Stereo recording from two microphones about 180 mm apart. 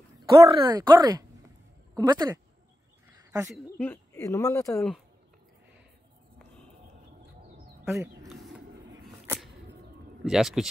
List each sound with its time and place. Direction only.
0.5 s speech: 25° right (ahead or behind)
3.1 s a sound: 15° right (ahead or behind)
3.8 s speech: 15° left (ahead or behind)
7.8 s bird: 15° right (ahead or behind)
10.2 s speech: centre (ahead or behind)